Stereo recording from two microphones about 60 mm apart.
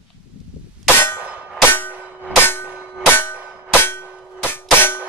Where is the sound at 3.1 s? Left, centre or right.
Left.